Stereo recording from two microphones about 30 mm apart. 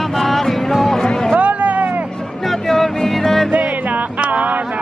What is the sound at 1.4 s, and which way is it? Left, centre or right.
Music, right.